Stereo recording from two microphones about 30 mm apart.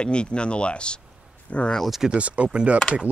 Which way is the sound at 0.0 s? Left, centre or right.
Left.